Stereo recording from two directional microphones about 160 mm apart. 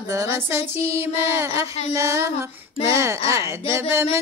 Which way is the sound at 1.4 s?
20° right (ahead or behind).